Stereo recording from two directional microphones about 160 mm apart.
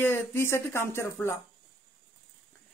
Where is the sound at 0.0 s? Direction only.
15° left (ahead or behind).